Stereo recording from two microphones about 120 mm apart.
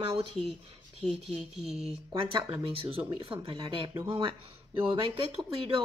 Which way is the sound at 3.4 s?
40° right (ahead or behind).